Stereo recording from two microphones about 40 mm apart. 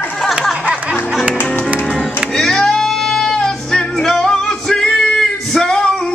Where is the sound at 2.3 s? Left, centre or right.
Centre.